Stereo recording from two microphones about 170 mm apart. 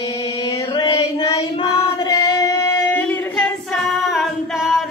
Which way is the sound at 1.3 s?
30° left (ahead or behind).